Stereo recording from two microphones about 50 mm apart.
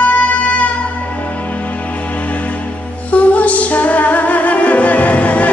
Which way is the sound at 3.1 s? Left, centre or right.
Left.